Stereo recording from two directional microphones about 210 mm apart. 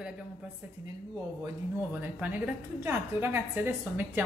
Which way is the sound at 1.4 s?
10° right (ahead or behind).